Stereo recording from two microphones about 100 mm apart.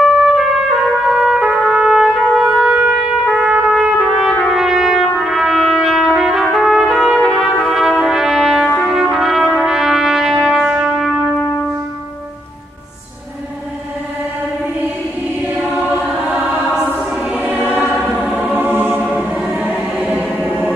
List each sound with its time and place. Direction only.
0.0 s trumpet: 5° right (ahead or behind)
6.5 s brass instrument: 5° right (ahead or behind)
8.8 s trumpet: 5° right (ahead or behind)
10.6 s music: 10° right (ahead or behind)
16.0 s choir: 5° right (ahead or behind)
18.4 s music: 20° right (ahead or behind)
19.1 s choir: centre (ahead or behind)
19.6 s choir: 15° right (ahead or behind)